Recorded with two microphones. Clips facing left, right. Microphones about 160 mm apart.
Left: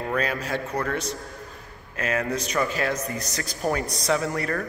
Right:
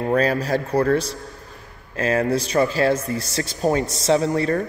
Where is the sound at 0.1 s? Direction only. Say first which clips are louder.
Right 8 dB; 35° right (ahead or behind).